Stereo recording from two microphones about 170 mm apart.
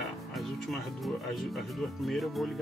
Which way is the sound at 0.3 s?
Centre (ahead or behind).